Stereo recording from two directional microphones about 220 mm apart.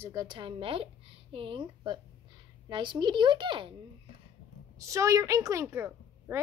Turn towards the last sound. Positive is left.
turn(degrees=-10)  # may be behind; listen again after turning